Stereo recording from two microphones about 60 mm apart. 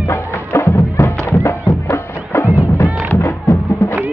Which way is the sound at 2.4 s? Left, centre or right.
Left.